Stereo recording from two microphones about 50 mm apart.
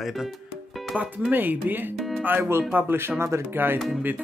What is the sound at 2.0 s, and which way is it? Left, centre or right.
Music, centre.